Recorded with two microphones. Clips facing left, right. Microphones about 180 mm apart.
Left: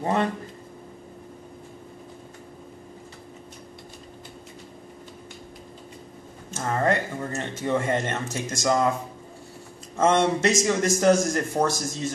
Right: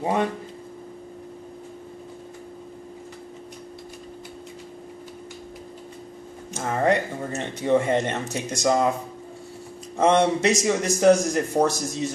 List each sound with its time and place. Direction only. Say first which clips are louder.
0.0 s speech: right 1 dB; 10° right (ahead or behind)
6.5 s speech: right 2 dB; 15° right (ahead or behind)
9.9 s speech: right 2 dB; 15° right (ahead or behind)